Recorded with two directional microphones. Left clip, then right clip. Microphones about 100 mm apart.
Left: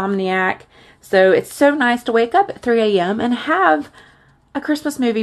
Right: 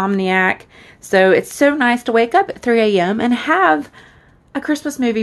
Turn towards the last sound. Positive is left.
turn(degrees=-5)  # may be behind; listen again after turning